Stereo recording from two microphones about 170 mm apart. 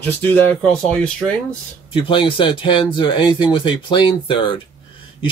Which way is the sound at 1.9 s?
30° left (ahead or behind).